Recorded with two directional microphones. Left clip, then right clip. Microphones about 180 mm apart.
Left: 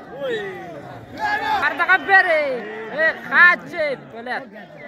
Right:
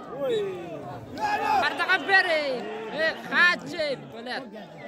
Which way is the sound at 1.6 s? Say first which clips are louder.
Left 7 dB; 30° left (ahead or behind).